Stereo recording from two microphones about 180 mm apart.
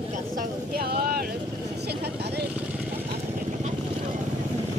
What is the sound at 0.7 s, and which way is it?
Speech, 60° right (ahead or behind).